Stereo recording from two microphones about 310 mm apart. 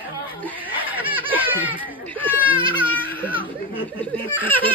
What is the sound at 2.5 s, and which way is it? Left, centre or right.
Speech, centre.